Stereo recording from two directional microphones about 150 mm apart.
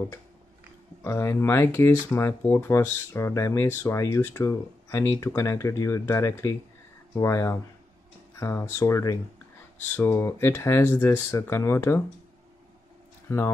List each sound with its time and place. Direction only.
1.0 s speech: 15° left (ahead or behind)